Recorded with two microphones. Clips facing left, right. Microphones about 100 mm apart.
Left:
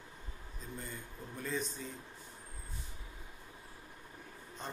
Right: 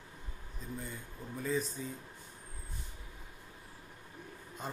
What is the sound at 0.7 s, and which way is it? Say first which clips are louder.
Speech: right 1 dB; 5° right (ahead or behind).